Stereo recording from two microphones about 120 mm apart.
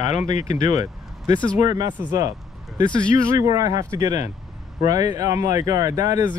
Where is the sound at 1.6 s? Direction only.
30° right (ahead or behind).